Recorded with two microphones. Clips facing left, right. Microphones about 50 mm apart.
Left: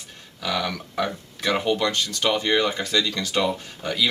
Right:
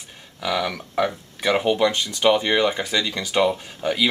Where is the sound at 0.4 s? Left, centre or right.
Centre.